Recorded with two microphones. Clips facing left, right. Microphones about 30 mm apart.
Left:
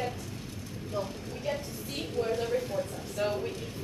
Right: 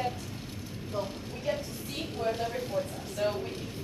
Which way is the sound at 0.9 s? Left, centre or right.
Centre.